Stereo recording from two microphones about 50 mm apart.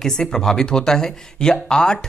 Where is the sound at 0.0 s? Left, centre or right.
Centre.